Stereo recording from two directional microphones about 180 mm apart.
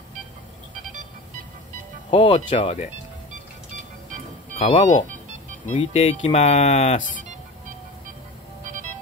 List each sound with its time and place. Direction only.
2.0 s speech: 30° left (ahead or behind)
4.6 s speech: 35° left (ahead or behind)